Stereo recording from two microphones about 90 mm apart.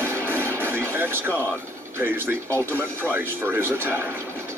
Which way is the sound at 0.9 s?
25° right (ahead or behind).